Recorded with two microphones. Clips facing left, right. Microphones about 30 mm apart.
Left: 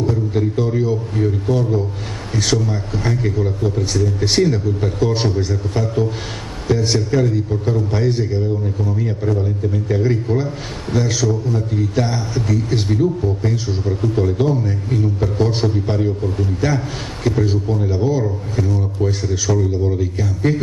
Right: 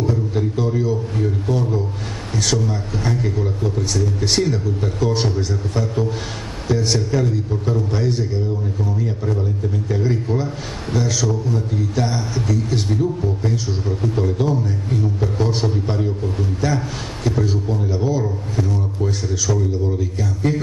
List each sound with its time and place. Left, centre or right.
0.0 s a man's voice: centre